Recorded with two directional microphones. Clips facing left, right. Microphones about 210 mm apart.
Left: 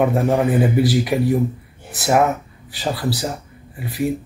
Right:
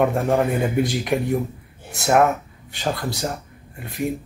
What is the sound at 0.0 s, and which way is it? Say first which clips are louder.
Speech: left 2 dB; centre (ahead or behind).